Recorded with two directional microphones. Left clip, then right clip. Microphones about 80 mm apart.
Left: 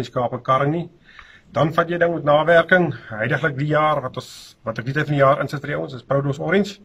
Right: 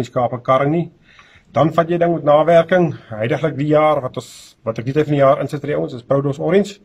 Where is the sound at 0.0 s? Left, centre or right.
Right.